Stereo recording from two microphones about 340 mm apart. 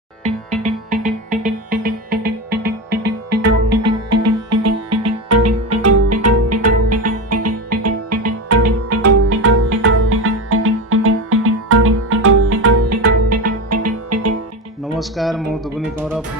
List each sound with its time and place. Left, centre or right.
0.2 s music: centre
4.1 s music: right
15.0 s music: centre